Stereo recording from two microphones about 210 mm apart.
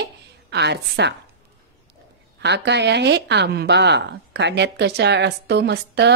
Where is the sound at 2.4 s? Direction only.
55° right (ahead or behind).